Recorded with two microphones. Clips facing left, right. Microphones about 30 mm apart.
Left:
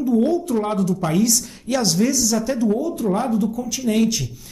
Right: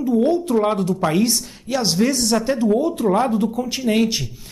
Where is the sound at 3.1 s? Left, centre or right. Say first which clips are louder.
Right 2 dB; right.